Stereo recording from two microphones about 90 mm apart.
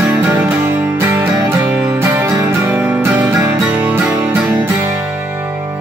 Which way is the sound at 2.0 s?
30° right (ahead or behind).